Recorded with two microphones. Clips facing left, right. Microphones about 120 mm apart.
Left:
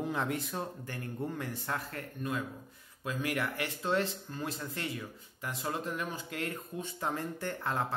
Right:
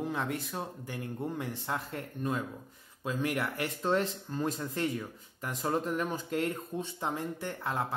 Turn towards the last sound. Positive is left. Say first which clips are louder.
# even
turn(degrees=-10)  # may be behind; listen again after turning